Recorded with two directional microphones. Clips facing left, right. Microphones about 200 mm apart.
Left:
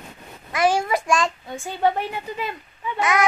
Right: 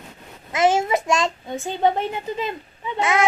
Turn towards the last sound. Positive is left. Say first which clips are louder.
# right 1 dB
turn(degrees=-25)  # may be behind; listen again after turning